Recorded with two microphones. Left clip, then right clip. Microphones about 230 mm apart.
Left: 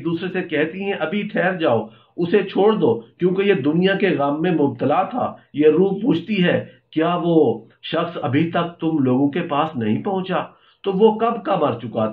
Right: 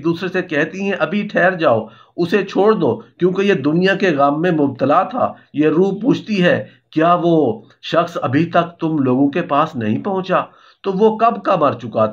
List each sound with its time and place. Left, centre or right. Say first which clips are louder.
0.0 s speech: right 5 dB; right
7.8 s speech: right 6 dB; right